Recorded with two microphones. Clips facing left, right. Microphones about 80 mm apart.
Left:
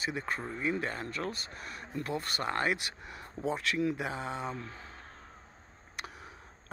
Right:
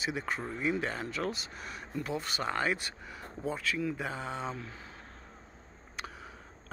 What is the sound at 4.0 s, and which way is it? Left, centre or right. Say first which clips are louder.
Speech: left 1 dB; centre.